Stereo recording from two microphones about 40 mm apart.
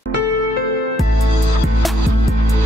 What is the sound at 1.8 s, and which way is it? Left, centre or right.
Music, centre.